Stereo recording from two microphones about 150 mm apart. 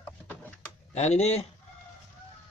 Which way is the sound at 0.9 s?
45° left (ahead or behind).